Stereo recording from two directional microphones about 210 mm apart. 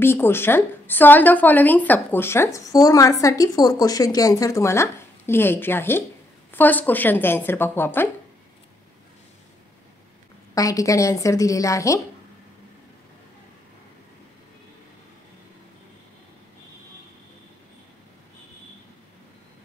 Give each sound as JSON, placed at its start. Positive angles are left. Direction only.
{"t": 0.0, "sound": "a woman's voice", "side_deg": 10}
{"t": 10.5, "sound": "a woman's voice", "side_deg": 15}